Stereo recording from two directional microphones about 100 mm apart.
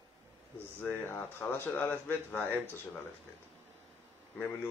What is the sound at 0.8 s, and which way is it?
Speech, 20° left (ahead or behind).